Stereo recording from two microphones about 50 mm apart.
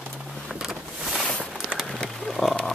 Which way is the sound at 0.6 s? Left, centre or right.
Centre.